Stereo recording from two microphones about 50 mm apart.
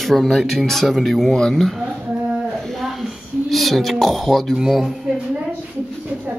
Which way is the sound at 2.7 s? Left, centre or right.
Centre.